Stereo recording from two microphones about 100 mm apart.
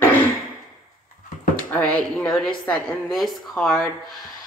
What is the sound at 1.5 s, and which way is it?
Speech, 15° left (ahead or behind).